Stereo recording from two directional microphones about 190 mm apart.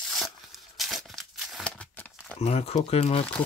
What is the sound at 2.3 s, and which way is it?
Speech, 30° left (ahead or behind).